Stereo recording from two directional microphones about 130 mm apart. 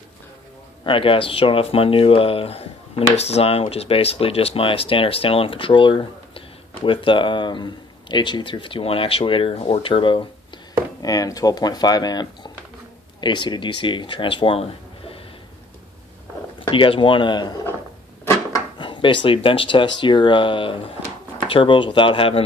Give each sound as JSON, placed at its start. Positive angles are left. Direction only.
{"t": 0.8, "sound": "speech", "side_deg": 40}
{"t": 11.0, "sound": "speech", "side_deg": 30}
{"t": 16.6, "sound": "speech", "side_deg": 40}
{"t": 18.2, "sound": "a sound", "side_deg": 20}
{"t": 18.8, "sound": "speech", "side_deg": 40}